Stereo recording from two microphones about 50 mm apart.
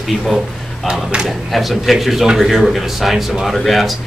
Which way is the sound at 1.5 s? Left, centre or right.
Centre.